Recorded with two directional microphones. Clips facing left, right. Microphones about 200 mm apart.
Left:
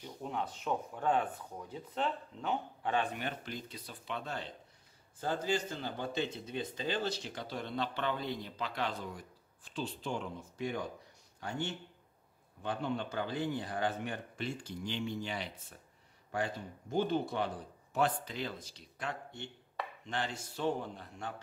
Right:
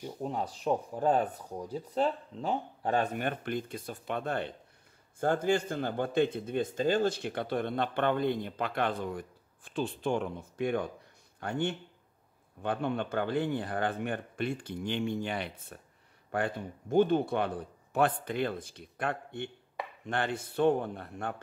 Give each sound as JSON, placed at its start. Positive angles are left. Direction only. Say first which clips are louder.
{"t": 0.2, "sound": "a man's voice", "louder": "right 4 dB", "side_deg": -35}